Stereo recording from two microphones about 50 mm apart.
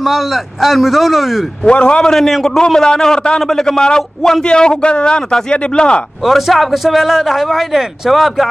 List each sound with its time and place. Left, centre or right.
0.0 s a man's voice: centre
1.6 s a man's voice: left
2.1 s a man's voice: centre
6.2 s a man's voice: centre